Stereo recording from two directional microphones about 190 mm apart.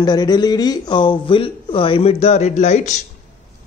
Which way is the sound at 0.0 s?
20° left (ahead or behind).